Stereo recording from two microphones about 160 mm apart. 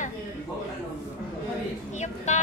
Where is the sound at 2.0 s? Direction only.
45° left (ahead or behind).